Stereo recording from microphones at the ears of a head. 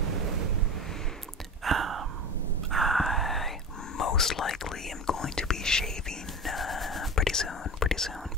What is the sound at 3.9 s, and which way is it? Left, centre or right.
Whispering, left.